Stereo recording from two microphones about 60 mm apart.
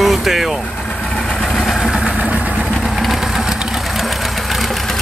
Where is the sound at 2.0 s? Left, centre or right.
Right.